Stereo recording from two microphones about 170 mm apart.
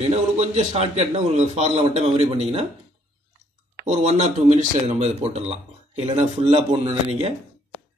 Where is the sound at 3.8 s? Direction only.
40° right (ahead or behind).